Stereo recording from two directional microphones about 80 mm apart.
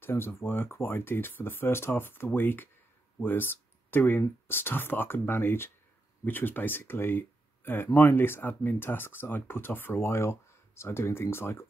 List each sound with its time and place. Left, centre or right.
0.0 s speech: left